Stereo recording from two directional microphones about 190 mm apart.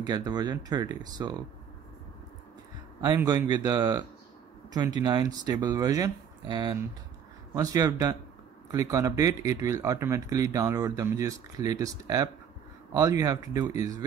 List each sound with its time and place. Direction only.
0.0 s speech: 20° right (ahead or behind)
3.5 s speech: 20° right (ahead or behind)